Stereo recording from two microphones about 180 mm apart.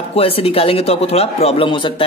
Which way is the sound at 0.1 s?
30° left (ahead or behind).